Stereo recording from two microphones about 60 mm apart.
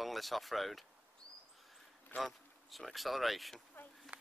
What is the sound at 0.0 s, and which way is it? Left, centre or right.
Speech, centre.